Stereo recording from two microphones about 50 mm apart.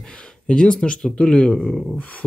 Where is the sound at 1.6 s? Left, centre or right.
Centre.